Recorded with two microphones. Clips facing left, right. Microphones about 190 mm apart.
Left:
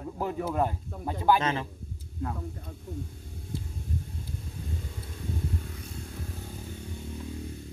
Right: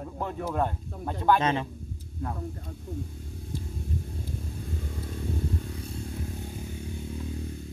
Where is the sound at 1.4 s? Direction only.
20° right (ahead or behind).